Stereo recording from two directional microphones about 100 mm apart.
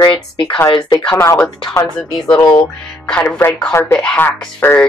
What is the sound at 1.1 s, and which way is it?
Speech, 30° left (ahead or behind).